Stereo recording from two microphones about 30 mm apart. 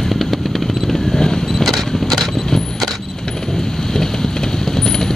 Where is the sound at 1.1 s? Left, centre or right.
Centre.